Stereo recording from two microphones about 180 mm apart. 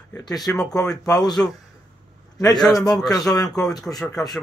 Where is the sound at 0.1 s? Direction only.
20° left (ahead or behind).